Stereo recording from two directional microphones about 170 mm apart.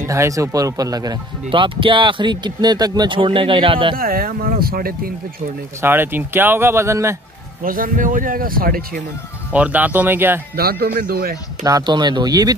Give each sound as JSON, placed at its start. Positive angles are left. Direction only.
{"t": 0.0, "sound": "speech", "side_deg": -15}
{"t": 3.9, "sound": "speech", "side_deg": -60}
{"t": 5.8, "sound": "speech", "side_deg": -15}
{"t": 7.6, "sound": "a man's voice", "side_deg": -55}
{"t": 9.5, "sound": "speech", "side_deg": -10}
{"t": 10.5, "sound": "a man's voice", "side_deg": -65}
{"t": 11.6, "sound": "speech", "side_deg": -25}